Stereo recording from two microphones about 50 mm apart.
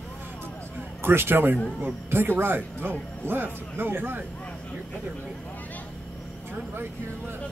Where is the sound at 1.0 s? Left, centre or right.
Right.